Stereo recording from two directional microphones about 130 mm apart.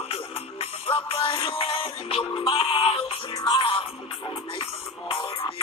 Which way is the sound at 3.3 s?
30° left (ahead or behind).